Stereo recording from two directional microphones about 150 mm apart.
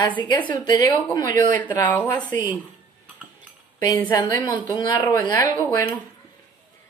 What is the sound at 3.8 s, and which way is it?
Speech, 30° left (ahead or behind).